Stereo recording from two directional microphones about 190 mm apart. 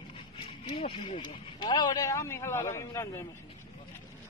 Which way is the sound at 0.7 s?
30° left (ahead or behind).